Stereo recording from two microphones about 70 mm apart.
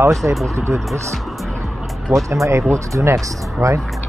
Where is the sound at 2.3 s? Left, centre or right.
Right.